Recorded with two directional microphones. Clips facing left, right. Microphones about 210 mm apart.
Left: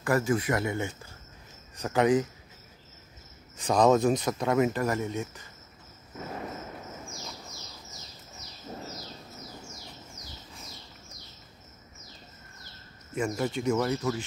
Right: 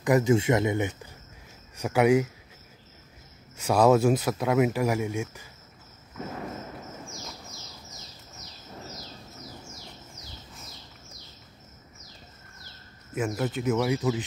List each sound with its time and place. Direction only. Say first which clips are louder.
0.0 s speech: right 4 dB; 20° right (ahead or behind)
3.5 s speech: right 2 dB; 10° right (ahead or behind)
13.1 s speech: right 1 dB; 5° right (ahead or behind)